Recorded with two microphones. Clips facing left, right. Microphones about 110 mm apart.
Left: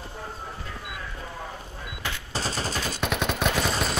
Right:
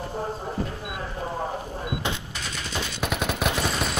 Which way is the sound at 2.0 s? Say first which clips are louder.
Right 5 dB; 20° right (ahead or behind).